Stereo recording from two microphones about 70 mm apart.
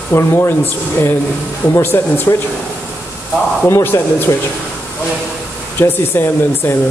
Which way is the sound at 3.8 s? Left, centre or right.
Left.